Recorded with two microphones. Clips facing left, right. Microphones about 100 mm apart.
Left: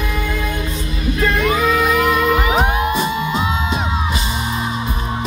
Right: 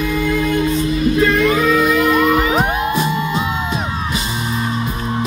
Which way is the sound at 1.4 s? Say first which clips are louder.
Right 2 dB; 15° left (ahead or behind).